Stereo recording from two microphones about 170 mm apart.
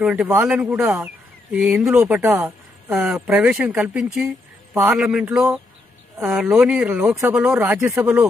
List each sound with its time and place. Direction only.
0.0 s speech: 5° right (ahead or behind)